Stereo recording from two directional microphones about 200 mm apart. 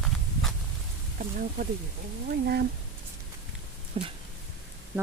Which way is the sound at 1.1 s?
45° right (ahead or behind).